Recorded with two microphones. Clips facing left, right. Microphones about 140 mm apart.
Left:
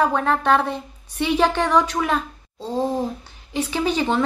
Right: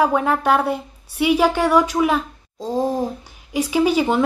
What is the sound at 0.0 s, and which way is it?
A woman's voice, 10° right (ahead or behind).